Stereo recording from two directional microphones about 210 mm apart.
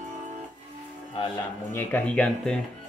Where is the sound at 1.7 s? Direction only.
10° left (ahead or behind).